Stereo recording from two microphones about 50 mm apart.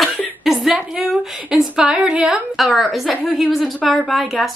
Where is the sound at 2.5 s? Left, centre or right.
Centre.